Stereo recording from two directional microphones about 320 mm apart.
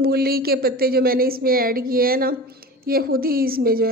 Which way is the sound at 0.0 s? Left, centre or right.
Right.